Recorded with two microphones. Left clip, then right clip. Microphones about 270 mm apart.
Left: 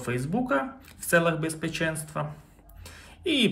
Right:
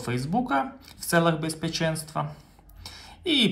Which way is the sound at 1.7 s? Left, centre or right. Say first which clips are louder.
Right 4 dB; centre.